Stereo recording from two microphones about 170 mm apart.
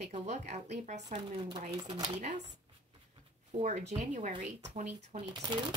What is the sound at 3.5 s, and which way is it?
Speech, 40° right (ahead or behind).